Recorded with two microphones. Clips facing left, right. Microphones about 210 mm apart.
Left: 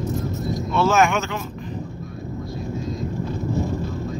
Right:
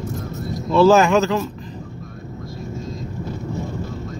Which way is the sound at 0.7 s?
35° right (ahead or behind).